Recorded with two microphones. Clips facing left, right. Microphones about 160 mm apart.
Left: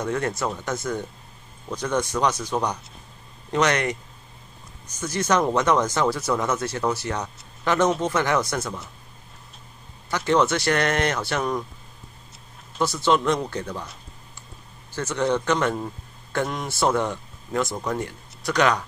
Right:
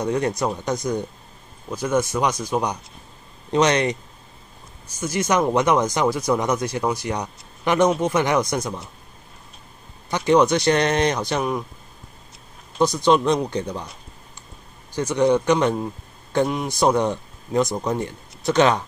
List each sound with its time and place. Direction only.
0.0 s speech: 15° right (ahead or behind)
10.0 s speech: 15° right (ahead or behind)
12.7 s speech: 20° right (ahead or behind)
15.0 s speech: 15° right (ahead or behind)